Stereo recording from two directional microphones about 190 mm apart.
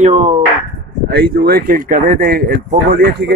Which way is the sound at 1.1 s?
55° right (ahead or behind).